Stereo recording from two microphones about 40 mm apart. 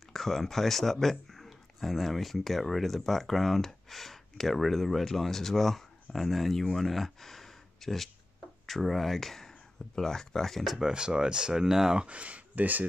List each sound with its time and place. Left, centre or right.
0.1 s speech: centre
10.6 s speech: centre
10.9 s speech: right
12.0 s speech: right